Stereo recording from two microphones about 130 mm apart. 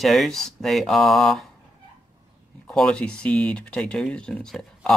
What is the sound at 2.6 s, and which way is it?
Speech, 5° left (ahead or behind).